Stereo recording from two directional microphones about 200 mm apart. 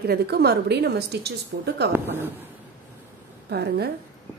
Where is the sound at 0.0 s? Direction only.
50° right (ahead or behind).